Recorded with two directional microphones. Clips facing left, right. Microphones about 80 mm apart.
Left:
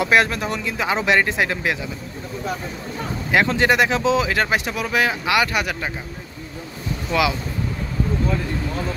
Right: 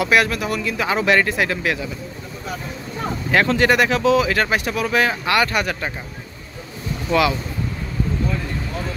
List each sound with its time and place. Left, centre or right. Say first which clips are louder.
0.0 s speech: even; left
3.3 s speech: right 1 dB; centre